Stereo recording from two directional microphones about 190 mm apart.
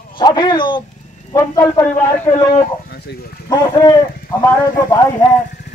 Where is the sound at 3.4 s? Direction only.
20° left (ahead or behind).